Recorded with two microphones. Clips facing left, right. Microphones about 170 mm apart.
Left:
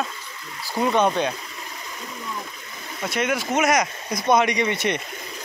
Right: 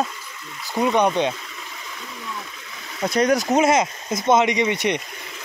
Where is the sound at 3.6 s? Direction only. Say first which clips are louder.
Right 2 dB; 25° right (ahead or behind).